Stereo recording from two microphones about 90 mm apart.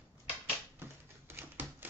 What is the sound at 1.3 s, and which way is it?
Typewriter, 25° right (ahead or behind).